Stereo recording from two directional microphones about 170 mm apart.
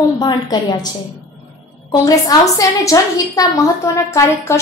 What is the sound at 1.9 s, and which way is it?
A woman's voice, 20° left (ahead or behind).